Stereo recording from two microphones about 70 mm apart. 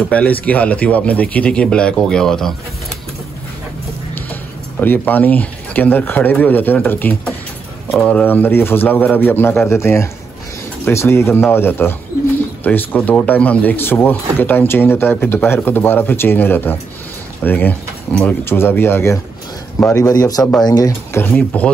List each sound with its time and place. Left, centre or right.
0.1 s speech: left
4.1 s a man's voice: left
20.0 s a man's voice: left
21.1 s speech: left